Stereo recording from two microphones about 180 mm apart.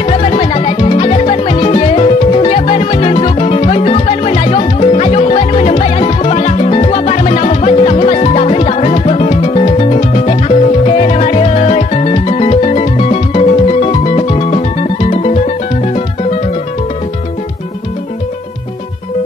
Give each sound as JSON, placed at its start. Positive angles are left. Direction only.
{"t": 0.0, "sound": "music", "side_deg": 35}